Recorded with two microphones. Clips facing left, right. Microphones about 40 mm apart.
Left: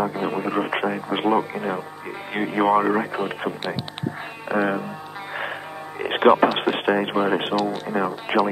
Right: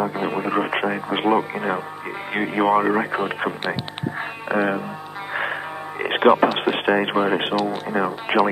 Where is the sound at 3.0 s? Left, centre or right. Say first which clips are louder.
Right 3 dB; right.